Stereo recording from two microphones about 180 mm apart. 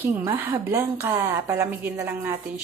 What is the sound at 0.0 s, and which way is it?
A woman's voice, 10° right (ahead or behind).